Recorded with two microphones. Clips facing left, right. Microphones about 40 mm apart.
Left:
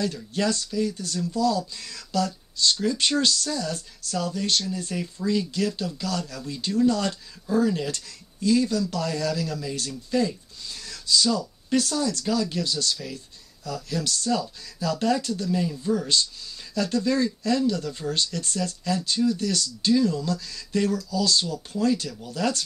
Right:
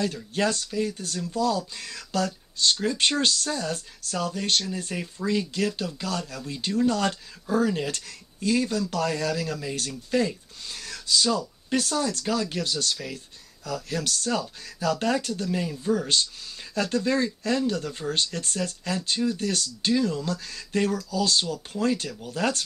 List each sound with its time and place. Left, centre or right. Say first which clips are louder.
0.0 s speech: even; right
6.9 s speech: even; right
14.9 s speech: left 1 dB; right
16.7 s speech: left 1 dB; right